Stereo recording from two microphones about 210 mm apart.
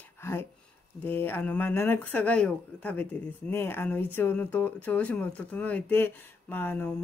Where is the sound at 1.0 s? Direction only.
10° left (ahead or behind).